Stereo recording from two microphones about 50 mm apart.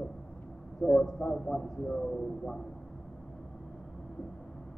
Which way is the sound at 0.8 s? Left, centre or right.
Left.